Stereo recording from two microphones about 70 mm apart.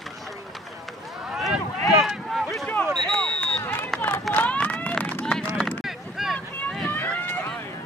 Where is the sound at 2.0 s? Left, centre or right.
Centre.